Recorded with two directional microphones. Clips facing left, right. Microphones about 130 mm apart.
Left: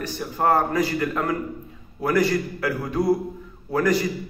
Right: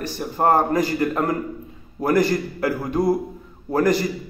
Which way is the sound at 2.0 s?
40° right (ahead or behind).